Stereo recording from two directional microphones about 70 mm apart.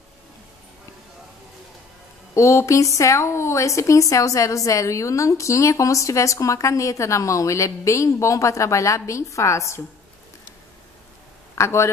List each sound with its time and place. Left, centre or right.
2.3 s speech: left
11.5 s speech: left